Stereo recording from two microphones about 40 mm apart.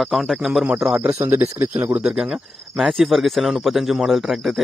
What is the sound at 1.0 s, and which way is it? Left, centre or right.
Speech, right.